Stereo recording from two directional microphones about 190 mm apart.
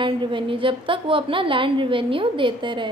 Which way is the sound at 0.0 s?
25° right (ahead or behind).